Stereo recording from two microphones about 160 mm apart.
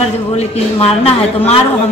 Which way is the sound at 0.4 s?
40° left (ahead or behind).